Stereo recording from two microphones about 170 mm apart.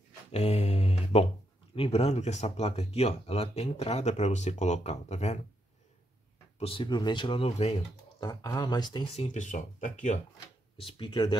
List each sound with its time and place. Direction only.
0.3 s mantra: 40° left (ahead or behind)
1.8 s speech: 40° left (ahead or behind)
6.6 s speech: 30° left (ahead or behind)
8.2 s speech: 20° left (ahead or behind); by 10.1 s 50° left (ahead or behind)
10.8 s speech: 30° left (ahead or behind)